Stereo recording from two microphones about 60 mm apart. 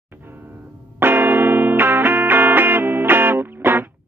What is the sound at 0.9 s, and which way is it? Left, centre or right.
Music, right.